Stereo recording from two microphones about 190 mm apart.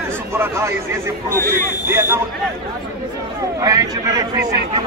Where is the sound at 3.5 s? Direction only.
20° right (ahead or behind).